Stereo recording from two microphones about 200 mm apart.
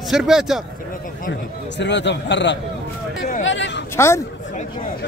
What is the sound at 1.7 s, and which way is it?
Speech, 60° left (ahead or behind).